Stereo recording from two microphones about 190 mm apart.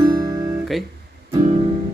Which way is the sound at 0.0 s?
20° right (ahead or behind).